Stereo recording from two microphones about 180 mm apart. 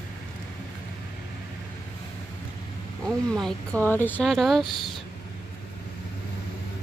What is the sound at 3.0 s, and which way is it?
Speech, 5° left (ahead or behind).